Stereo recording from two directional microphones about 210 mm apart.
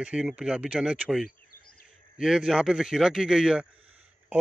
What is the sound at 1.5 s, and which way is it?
Insect, 45° left (ahead or behind).